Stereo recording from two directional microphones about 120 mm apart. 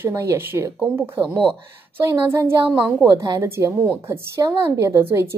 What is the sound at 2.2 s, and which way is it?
A woman's voice, 20° right (ahead or behind).